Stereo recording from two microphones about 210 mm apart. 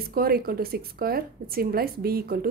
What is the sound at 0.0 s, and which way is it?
A woman's voice, 45° right (ahead or behind).